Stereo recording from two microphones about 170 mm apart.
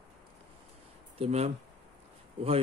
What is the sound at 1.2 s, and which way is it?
Speech, 40° right (ahead or behind).